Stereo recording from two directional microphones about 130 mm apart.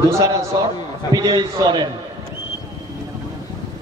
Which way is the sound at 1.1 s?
30° right (ahead or behind).